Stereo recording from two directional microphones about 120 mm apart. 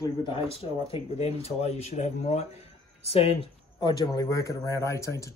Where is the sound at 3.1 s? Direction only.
55° left (ahead or behind).